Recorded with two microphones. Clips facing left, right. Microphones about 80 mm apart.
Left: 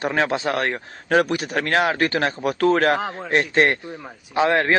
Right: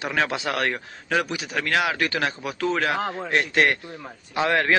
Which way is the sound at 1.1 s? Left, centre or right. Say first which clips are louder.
Left 6 dB; left.